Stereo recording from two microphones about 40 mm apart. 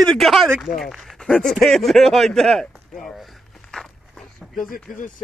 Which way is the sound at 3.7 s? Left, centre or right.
Centre.